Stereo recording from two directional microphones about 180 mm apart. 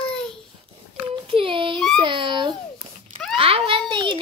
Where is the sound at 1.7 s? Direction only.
Centre (ahead or behind).